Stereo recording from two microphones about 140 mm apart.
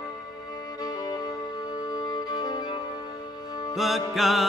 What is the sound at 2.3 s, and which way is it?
Violin, 30° left (ahead or behind).